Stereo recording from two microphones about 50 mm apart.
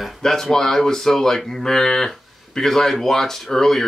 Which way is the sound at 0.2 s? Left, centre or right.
Centre.